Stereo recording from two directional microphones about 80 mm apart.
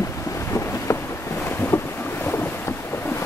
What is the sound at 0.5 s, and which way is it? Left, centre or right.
Boat, left.